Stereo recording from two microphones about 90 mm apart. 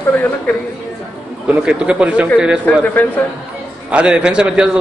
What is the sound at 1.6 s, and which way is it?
Speech, 10° right (ahead or behind).